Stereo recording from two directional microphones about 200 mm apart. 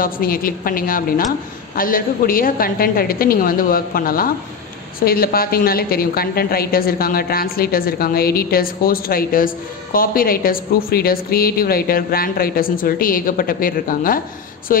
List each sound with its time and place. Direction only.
0.0 s a woman's voice: 45° left (ahead or behind)